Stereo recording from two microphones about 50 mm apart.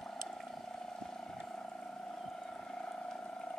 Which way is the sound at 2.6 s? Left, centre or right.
Centre.